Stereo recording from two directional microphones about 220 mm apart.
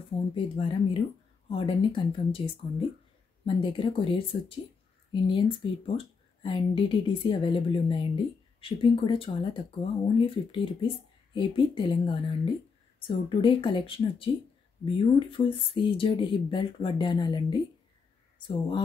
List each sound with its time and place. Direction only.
0.3 s speech: 25° left (ahead or behind)